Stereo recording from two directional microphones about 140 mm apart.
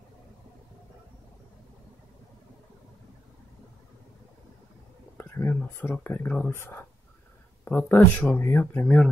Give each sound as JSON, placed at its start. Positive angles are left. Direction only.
{"t": 5.1, "sound": "whispering", "side_deg": 20}
{"t": 5.7, "sound": "speech", "side_deg": 15}